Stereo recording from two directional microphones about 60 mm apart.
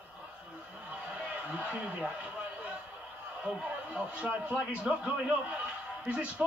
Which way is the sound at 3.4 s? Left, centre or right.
Centre.